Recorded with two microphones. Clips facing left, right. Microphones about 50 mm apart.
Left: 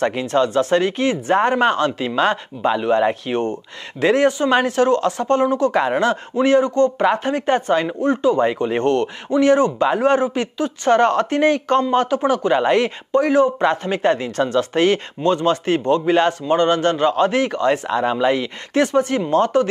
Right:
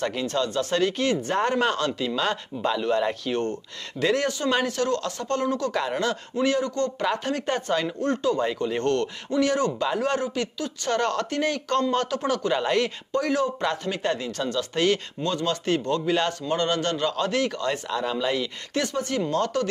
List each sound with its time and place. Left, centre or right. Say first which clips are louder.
0.0 s speech: left 8 dB; left